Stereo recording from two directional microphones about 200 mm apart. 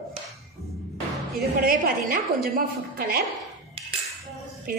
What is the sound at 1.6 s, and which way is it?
A woman's voice, 45° right (ahead or behind).